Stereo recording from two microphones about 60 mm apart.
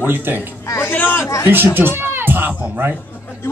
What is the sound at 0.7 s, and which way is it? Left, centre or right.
Speech, left.